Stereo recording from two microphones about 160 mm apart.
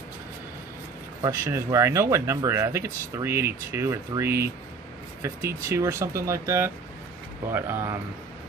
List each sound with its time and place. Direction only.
1.2 s speech: 20° right (ahead or behind)